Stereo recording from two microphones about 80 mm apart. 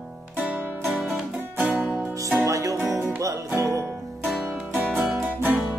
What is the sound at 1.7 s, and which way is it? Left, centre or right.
Music, centre.